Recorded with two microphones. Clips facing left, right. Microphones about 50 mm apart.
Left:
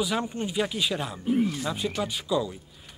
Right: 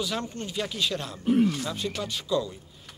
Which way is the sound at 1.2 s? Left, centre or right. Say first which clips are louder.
Right 3 dB; right.